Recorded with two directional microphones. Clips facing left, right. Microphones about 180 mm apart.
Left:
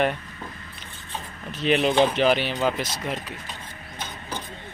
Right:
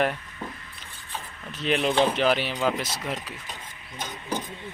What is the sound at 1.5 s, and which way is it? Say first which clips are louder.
Speech: left 3 dB; centre (ahead or behind).